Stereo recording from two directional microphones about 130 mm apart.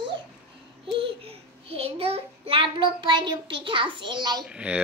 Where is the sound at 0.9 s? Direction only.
45° right (ahead or behind).